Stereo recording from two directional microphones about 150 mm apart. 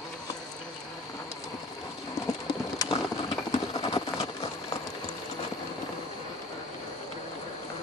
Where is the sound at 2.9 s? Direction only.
40° left (ahead or behind).